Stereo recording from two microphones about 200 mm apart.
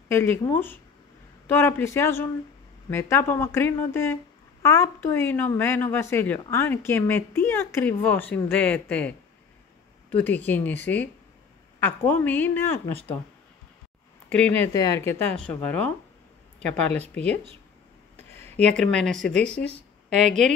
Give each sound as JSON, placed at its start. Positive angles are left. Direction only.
{"t": 0.1, "sound": "a woman's voice", "side_deg": 10}
{"t": 11.8, "sound": "a woman's voice", "side_deg": 10}
{"t": 14.3, "sound": "a woman's voice", "side_deg": 5}
{"t": 18.3, "sound": "a sound", "side_deg": 10}
{"t": 19.0, "sound": "speech", "side_deg": 5}
{"t": 20.2, "sound": "a woman's voice", "side_deg": -35}